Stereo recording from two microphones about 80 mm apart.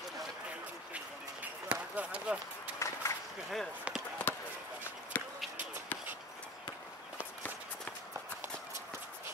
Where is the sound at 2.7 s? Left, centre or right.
Left.